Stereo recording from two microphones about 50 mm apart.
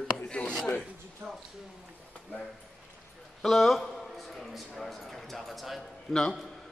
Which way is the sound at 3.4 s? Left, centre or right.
Centre.